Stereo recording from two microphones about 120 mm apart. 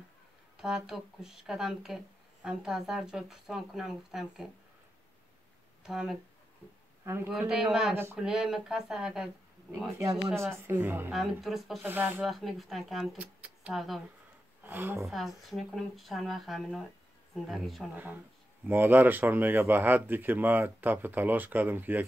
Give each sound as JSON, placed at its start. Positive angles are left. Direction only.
{"t": 0.6, "sound": "speech", "side_deg": -5}
{"t": 5.9, "sound": "speech", "side_deg": -5}
{"t": 7.1, "sound": "speech", "side_deg": -20}
{"t": 7.3, "sound": "speech", "side_deg": -5}
{"t": 7.9, "sound": "speech", "side_deg": -20}
{"t": 8.2, "sound": "speech", "side_deg": -5}
{"t": 10.4, "sound": "speech", "side_deg": -20}
{"t": 11.1, "sound": "speech", "side_deg": 0}
{"t": 11.8, "sound": "speech", "side_deg": -15}
{"t": 12.3, "sound": "speech", "side_deg": 0}
{"t": 14.6, "sound": "speech", "side_deg": -15}
{"t": 15.0, "sound": "speech", "side_deg": 0}
{"t": 17.9, "sound": "speech", "side_deg": -15}